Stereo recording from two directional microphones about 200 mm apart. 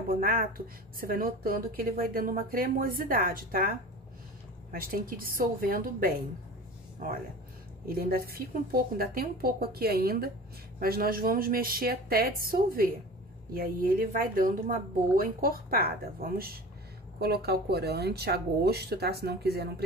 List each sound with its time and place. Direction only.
0.1 s speech: 45° right (ahead or behind)
4.7 s speech: 45° right (ahead or behind)
7.8 s speech: 50° right (ahead or behind)